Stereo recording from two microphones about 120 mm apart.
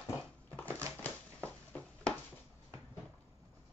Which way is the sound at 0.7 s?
25° right (ahead or behind).